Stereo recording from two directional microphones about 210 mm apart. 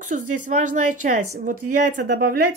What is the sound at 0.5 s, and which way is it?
Speech, 35° right (ahead or behind).